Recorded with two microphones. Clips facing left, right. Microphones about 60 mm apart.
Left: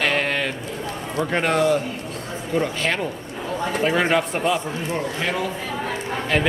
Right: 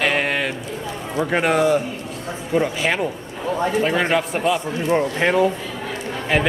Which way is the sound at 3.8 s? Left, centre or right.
Centre.